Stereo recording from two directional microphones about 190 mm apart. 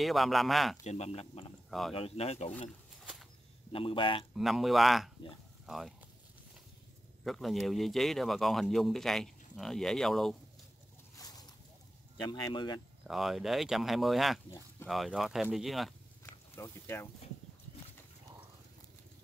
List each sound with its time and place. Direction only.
0.0 s speech: centre (ahead or behind)
0.8 s speech: 35° left (ahead or behind)
1.7 s speech: centre (ahead or behind)
2.0 s speech: 30° left (ahead or behind)
3.0 s a sound: centre (ahead or behind)
3.7 s speech: 30° left (ahead or behind)
4.4 s speech: centre (ahead or behind)
7.2 s speech: centre (ahead or behind)
11.1 s a sound: 20° left (ahead or behind)
12.3 s speech: 25° left (ahead or behind)
13.0 s speech: centre (ahead or behind)
16.3 s a sound: 15° left (ahead or behind)